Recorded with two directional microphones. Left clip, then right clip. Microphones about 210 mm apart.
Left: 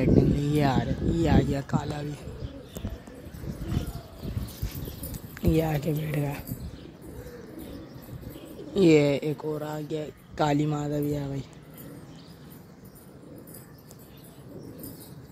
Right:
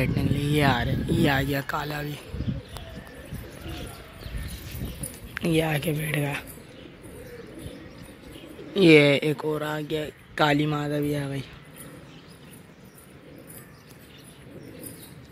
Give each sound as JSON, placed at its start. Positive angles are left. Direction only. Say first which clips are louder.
{"t": 0.0, "sound": "speech", "louder": "left 4 dB", "side_deg": 10}
{"t": 5.3, "sound": "speech", "louder": "right 2 dB", "side_deg": 5}
{"t": 8.7, "sound": "speech", "louder": "right 4 dB", "side_deg": 0}